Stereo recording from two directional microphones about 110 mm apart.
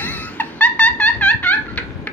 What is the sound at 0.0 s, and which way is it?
Laughter, 15° left (ahead or behind).